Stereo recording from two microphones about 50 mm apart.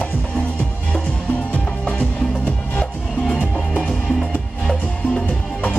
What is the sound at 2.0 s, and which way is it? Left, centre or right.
Music, centre.